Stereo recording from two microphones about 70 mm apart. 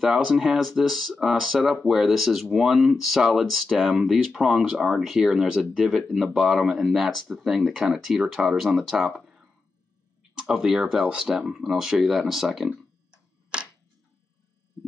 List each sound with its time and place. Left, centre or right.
0.0 s speech: centre
13.1 s camera: centre